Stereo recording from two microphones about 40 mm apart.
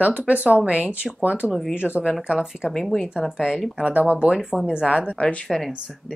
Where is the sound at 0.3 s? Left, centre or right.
Right.